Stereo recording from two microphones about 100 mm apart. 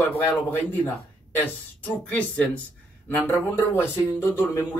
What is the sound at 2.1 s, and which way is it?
Speech, 10° left (ahead or behind).